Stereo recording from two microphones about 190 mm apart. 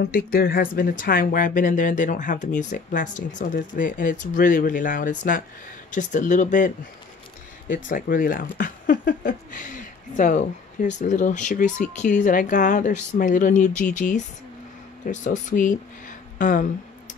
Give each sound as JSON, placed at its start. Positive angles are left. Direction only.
{"t": 0.0, "sound": "speech", "side_deg": 50}